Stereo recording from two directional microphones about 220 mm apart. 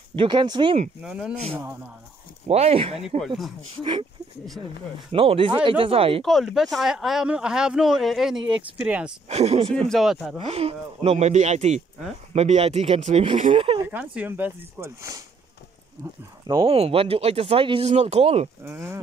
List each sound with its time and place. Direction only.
0.1 s speech: 20° right (ahead or behind)
1.0 s speech: 5° right (ahead or behind)
2.4 s speech: 25° right (ahead or behind)
5.1 s speech: 25° right (ahead or behind)
6.2 s speech: centre (ahead or behind)
9.3 s speech: 30° right (ahead or behind)
9.7 s speech: 5° left (ahead or behind)
10.4 s speech: 25° right (ahead or behind)
13.8 s speech: 10° right (ahead or behind); by 18.5 s 30° right (ahead or behind)
18.6 s speech: 10° right (ahead or behind)